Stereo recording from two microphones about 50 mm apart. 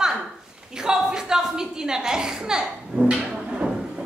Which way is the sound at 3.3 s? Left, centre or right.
Centre.